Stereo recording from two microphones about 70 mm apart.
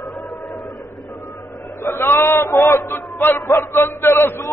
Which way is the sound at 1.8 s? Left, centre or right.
Left.